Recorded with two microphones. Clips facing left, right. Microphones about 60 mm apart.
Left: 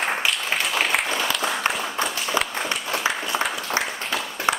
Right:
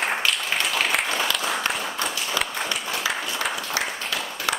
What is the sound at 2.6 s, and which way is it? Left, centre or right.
Applause, centre.